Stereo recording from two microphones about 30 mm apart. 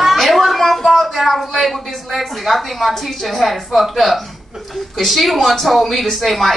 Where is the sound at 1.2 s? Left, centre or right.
Centre.